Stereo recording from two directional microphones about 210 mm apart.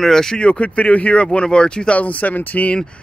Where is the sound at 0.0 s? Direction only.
Centre (ahead or behind).